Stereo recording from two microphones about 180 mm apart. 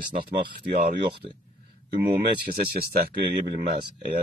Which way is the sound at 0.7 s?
60° right (ahead or behind).